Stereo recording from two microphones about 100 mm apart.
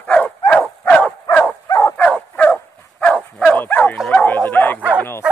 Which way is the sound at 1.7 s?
35° left (ahead or behind).